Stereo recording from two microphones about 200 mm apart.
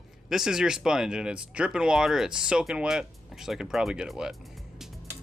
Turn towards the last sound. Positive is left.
turn(degrees=-5)  # may be behind; listen again after turning